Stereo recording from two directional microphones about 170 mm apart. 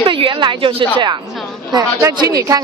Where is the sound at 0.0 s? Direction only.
30° right (ahead or behind).